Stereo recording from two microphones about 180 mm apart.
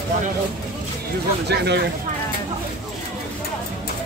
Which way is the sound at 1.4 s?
65° right (ahead or behind).